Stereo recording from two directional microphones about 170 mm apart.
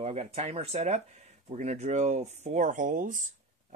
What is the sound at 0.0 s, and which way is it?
Speech, 40° right (ahead or behind).